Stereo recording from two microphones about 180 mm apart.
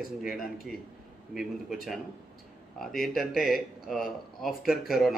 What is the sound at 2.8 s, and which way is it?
A man's voice, centre (ahead or behind).